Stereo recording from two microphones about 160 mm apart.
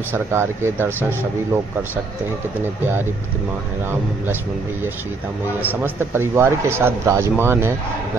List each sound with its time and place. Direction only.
0.1 s speech: 15° right (ahead or behind)
5.6 s speech: 15° right (ahead or behind)